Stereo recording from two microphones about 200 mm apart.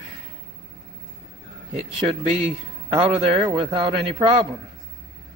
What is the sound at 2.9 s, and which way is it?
A man's voice, 30° right (ahead or behind).